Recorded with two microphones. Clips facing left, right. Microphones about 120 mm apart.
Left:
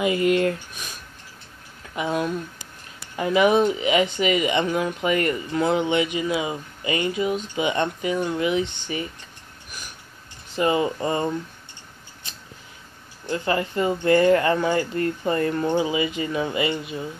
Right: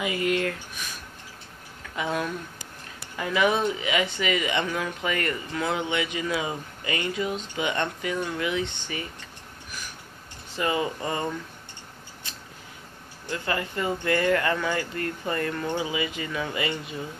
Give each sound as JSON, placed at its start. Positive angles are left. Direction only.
{"t": 0.0, "sound": "speech", "side_deg": 25}
{"t": 2.0, "sound": "speech", "side_deg": 20}
{"t": 10.5, "sound": "speech", "side_deg": 25}
{"t": 13.3, "sound": "speech", "side_deg": 25}